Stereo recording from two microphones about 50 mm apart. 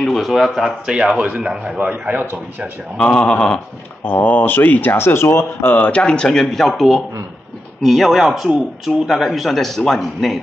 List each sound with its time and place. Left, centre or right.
0.0 s speech: centre
0.8 s a man's voice: centre
3.0 s speech: centre
4.0 s speech: left
5.8 s speech: left
6.0 s speech: centre
6.7 s speech: centre